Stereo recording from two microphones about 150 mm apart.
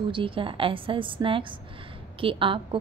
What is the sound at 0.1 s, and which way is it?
A woman's voice, 35° right (ahead or behind).